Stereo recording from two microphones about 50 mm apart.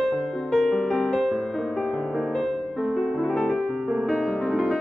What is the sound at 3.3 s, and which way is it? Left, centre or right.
Music, centre.